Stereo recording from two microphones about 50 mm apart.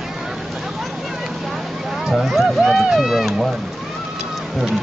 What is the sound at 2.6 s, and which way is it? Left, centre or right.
Speech, centre.